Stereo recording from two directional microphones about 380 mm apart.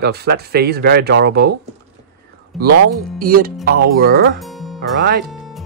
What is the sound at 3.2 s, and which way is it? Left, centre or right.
Speech, right.